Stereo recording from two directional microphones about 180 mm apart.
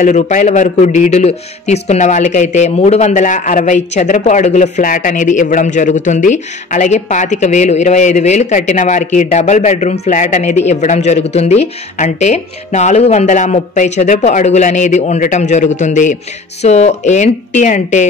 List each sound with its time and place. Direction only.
0.0 s a man's voice: 45° left (ahead or behind)